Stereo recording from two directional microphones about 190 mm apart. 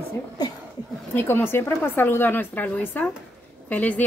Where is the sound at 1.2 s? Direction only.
10° left (ahead or behind).